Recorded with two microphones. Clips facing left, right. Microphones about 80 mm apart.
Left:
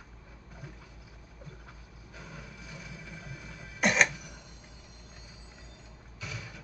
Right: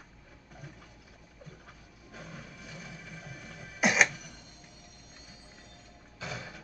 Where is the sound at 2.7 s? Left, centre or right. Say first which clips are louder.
Even; right.